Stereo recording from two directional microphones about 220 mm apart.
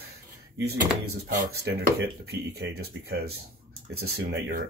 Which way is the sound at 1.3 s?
45° right (ahead or behind).